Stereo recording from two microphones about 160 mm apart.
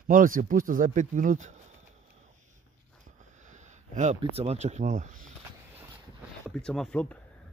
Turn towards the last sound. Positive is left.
turn(degrees=10)  # may be behind; listen again after turning